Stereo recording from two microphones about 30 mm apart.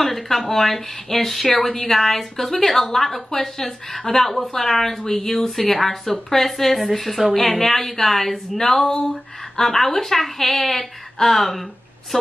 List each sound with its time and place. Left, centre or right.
0.0 s a woman's voice: centre